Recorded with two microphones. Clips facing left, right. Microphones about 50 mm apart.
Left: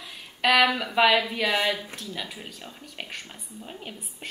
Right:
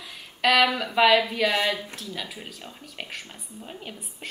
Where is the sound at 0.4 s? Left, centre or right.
Centre.